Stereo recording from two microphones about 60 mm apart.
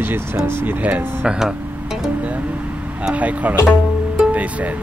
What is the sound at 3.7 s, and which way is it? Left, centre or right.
Music, right.